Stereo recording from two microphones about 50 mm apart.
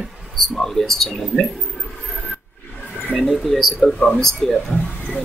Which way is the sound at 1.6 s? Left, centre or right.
Centre.